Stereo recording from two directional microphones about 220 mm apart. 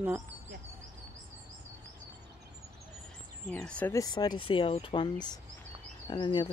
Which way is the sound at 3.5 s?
5° left (ahead or behind).